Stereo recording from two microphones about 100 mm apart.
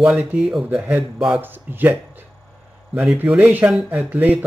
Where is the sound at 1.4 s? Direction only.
20° right (ahead or behind).